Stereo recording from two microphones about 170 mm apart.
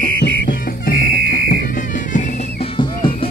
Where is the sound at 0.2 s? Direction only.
85° left; by 1.4 s 60° left (ahead or behind).